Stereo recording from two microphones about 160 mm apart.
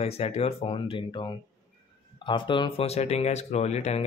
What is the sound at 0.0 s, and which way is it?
Speech, 40° left (ahead or behind).